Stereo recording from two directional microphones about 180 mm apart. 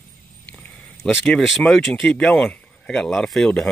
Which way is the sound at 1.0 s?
Centre (ahead or behind).